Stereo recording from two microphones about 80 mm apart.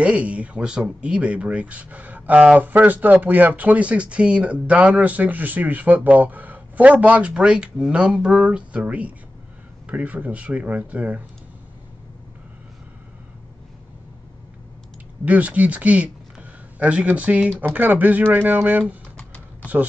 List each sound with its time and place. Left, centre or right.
0.0 s speech: centre
15.2 s a man's voice: centre